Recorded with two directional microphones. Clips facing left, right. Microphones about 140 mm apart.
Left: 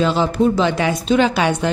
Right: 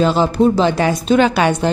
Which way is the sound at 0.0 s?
40° right (ahead or behind).